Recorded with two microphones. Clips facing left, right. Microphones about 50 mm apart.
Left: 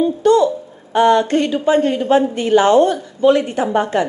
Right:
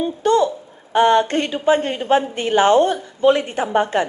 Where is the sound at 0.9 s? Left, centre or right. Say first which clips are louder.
Left 2 dB; right.